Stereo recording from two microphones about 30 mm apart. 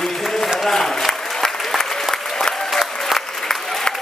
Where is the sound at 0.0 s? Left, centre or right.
Centre.